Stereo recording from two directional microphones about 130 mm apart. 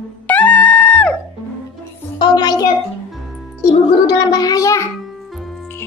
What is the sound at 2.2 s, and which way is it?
A child's voice, 30° left (ahead or behind).